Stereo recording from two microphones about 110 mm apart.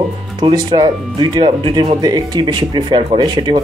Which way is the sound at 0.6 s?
40° right (ahead or behind).